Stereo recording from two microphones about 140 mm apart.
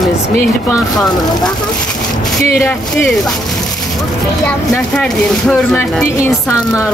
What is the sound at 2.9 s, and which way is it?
Speech, centre (ahead or behind).